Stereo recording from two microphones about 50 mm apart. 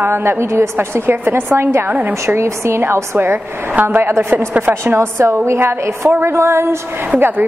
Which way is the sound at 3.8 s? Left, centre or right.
Right.